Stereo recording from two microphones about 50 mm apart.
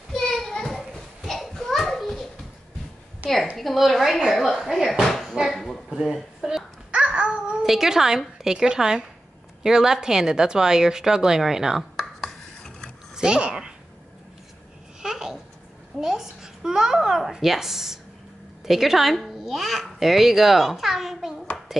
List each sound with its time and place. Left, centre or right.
0.1 s a sound: centre
0.9 s children playing: centre
3.2 s a sound: right
3.5 s a child's voice: centre
5.0 s a sound: centre
5.9 s a sound: centre
6.9 s babbling: centre
7.6 s speech: centre
12.0 s chopping: centre
13.1 s speech: centre
15.0 s babbling: centre
18.6 s a child's voice: centre